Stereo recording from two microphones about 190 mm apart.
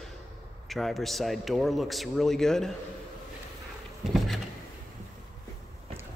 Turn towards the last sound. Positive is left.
turn(degrees=0)  # may be behind; listen again after turning